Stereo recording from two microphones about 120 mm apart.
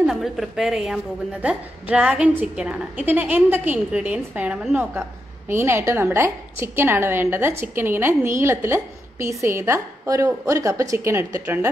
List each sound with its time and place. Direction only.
0.0 s a woman's voice: centre (ahead or behind); by 11.7 s 20° right (ahead or behind)